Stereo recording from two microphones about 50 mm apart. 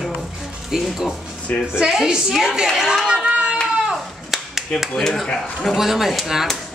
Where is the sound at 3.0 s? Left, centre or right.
Right.